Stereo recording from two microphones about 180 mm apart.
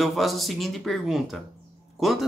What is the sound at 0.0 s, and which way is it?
Speech, centre (ahead or behind).